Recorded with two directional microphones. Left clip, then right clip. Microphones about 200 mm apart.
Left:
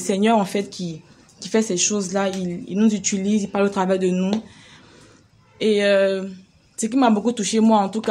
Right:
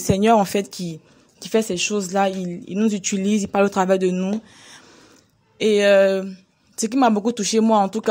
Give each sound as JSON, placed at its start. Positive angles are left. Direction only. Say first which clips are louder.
{"t": 0.0, "sound": "speech", "louder": "right 2 dB", "side_deg": -40}